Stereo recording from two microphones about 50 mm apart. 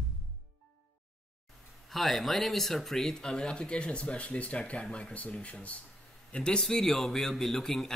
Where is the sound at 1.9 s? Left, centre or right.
Centre.